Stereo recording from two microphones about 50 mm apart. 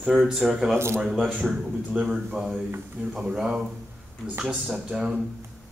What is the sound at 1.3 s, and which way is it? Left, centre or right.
A man's voice, centre.